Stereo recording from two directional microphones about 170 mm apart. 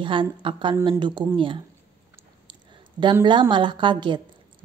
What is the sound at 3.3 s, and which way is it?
Speech, 30° right (ahead or behind).